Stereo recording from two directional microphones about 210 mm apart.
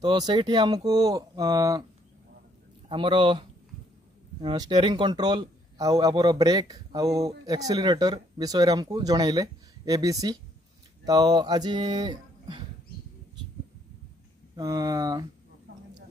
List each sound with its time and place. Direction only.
0.0 s a man's voice: 20° right (ahead or behind)
2.9 s a man's voice: 25° right (ahead or behind)
14.5 s a man's voice: 15° right (ahead or behind)